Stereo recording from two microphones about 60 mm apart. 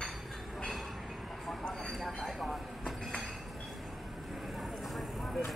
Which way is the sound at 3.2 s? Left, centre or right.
Centre.